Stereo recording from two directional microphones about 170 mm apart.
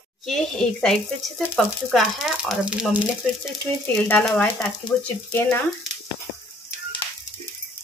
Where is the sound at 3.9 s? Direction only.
10° left (ahead or behind).